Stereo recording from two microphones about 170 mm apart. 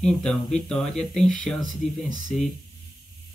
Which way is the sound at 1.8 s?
40° left (ahead or behind).